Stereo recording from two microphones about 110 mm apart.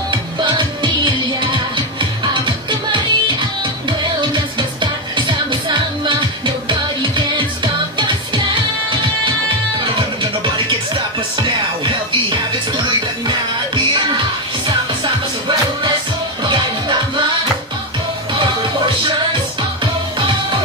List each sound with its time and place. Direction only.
0.1 s music: 45° right (ahead or behind)
9.8 s music: 45° right (ahead or behind)
19.0 s music: 45° right (ahead or behind)